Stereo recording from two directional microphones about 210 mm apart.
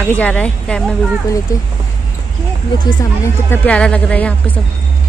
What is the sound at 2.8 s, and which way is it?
Speech, 15° left (ahead or behind).